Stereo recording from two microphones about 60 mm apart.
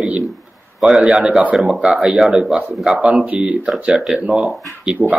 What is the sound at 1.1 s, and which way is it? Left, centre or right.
A man's voice, centre.